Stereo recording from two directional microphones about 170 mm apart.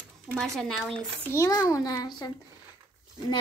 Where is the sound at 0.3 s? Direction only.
5° left (ahead or behind).